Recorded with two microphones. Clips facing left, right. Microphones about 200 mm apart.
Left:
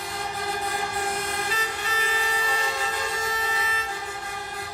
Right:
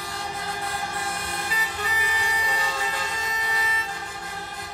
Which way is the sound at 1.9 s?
15° right (ahead or behind).